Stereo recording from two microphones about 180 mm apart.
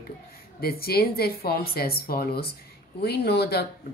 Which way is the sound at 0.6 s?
60° left (ahead or behind).